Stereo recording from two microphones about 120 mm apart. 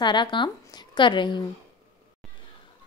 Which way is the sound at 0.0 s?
40° left (ahead or behind).